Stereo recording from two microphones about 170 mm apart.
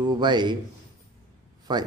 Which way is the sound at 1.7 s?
25° right (ahead or behind).